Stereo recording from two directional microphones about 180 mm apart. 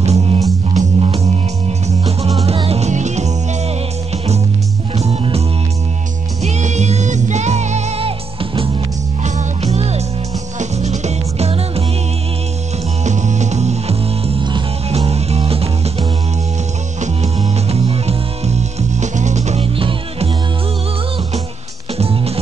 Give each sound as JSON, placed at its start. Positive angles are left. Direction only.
{"t": 0.0, "sound": "music", "side_deg": -35}
{"t": 4.9, "sound": "music", "side_deg": -35}
{"t": 6.4, "sound": "music", "side_deg": -40}
{"t": 13.0, "sound": "music", "side_deg": -40}
{"t": 21.9, "sound": "music", "side_deg": -35}